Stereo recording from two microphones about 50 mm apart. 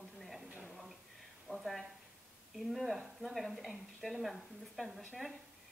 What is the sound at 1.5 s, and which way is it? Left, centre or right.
Speech, right.